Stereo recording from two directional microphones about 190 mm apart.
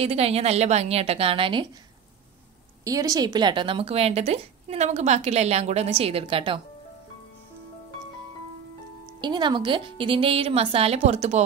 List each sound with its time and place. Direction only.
0.0 s speech: 30° right (ahead or behind)
2.8 s speech: 20° right (ahead or behind)
9.2 s a woman's voice: 25° right (ahead or behind)